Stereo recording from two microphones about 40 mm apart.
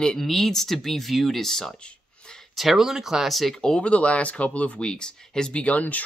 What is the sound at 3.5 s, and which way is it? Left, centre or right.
Speech, centre.